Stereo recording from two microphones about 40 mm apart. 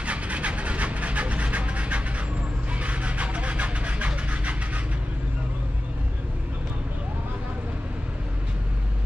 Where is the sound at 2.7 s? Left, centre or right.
Right.